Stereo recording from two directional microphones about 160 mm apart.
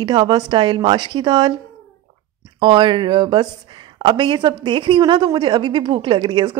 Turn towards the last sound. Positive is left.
turn(degrees=-25)  # may be behind; listen again after turning